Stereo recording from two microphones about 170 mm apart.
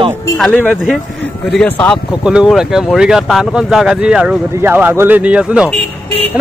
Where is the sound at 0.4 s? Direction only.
10° left (ahead or behind).